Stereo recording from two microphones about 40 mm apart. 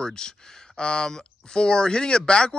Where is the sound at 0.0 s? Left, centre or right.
Centre.